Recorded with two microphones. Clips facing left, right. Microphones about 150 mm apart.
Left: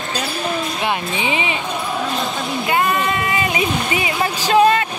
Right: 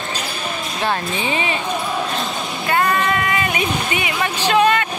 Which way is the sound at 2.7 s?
20° left (ahead or behind).